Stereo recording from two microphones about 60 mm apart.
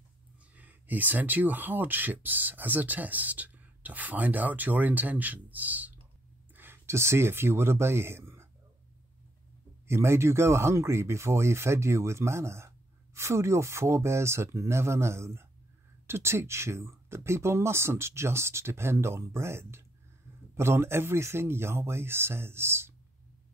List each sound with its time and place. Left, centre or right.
0.6 s speech: right
9.8 s speech: right